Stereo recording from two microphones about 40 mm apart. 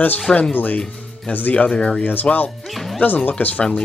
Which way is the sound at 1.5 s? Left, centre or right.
Left.